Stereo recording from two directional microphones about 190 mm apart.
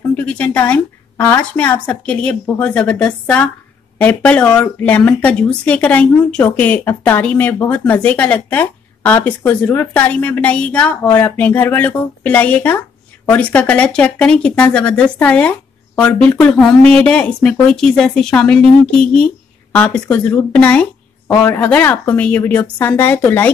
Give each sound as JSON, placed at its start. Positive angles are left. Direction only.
{"t": 0.1, "sound": "a woman's voice", "side_deg": 5}